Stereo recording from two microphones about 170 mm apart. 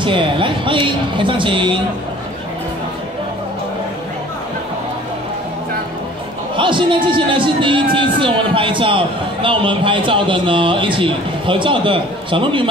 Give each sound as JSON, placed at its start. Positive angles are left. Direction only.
{"t": 0.0, "sound": "speech", "side_deg": -30}
{"t": 6.5, "sound": "a man's voice", "side_deg": -30}